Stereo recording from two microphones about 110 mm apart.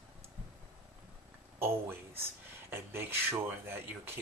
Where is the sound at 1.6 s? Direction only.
20° right (ahead or behind).